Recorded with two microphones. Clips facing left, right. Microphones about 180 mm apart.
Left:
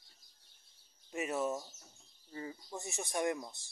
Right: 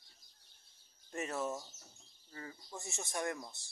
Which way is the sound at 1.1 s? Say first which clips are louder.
Left 3 dB; 10° left (ahead or behind).